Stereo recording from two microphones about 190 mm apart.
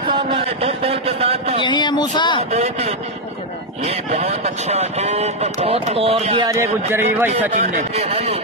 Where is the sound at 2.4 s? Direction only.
35° right (ahead or behind).